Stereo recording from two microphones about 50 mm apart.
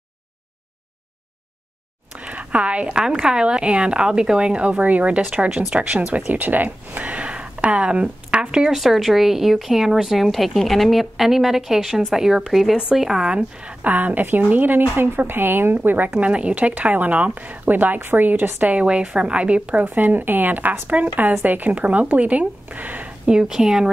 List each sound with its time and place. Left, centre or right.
2.1 s a woman's voice: right
8.7 s speech: centre
13.8 s a woman's voice: right
16.2 s a woman's voice: right
20.9 s a woman's voice: right
23.2 s speech: centre